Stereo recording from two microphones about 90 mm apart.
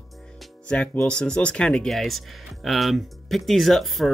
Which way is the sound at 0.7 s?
15° left (ahead or behind).